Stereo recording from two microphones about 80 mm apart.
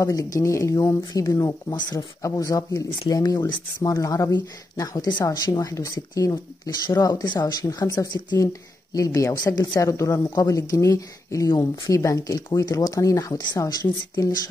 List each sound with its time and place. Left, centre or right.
0.0 s speech: left
1.7 s speech: left
2.2 s speech: left
11.5 s speech: left
11.9 s speech: left